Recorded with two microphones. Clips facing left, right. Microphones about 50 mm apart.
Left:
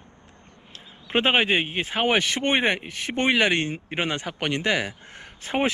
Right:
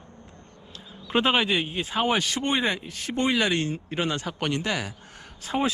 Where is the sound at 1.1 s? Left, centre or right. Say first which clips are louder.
Left 2 dB; left.